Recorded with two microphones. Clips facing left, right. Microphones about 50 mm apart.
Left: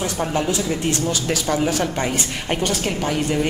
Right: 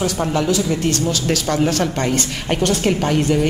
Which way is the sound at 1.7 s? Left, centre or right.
Centre.